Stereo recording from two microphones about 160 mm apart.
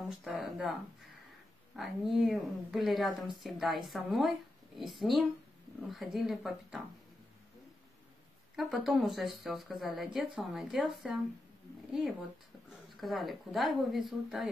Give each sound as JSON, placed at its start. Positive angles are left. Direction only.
{"t": 0.2, "sound": "speech", "side_deg": 0}
{"t": 1.8, "sound": "speech", "side_deg": 0}
{"t": 8.5, "sound": "speech", "side_deg": 0}
{"t": 12.9, "sound": "speech", "side_deg": 0}